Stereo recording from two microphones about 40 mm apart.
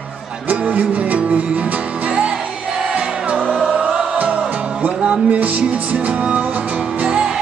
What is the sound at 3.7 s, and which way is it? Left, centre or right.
Music, right.